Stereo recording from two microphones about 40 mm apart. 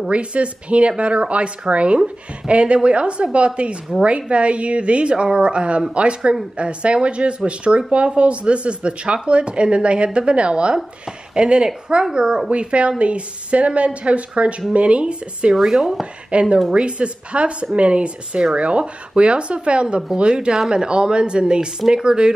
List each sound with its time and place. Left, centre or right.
0.1 s speech: right
12.4 s speech: right
15.5 s speech: centre
16.3 s speech: right